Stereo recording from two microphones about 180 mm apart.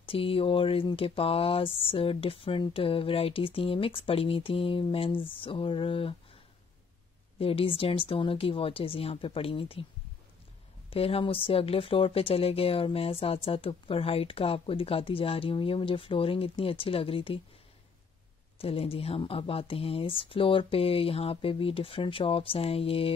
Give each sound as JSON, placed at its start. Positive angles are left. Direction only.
{"t": 0.0, "sound": "speech", "side_deg": 30}
{"t": 7.3, "sound": "speech", "side_deg": 30}
{"t": 10.9, "sound": "speech", "side_deg": 30}
{"t": 18.6, "sound": "speech", "side_deg": 30}